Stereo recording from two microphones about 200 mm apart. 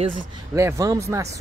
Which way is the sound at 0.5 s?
15° right (ahead or behind).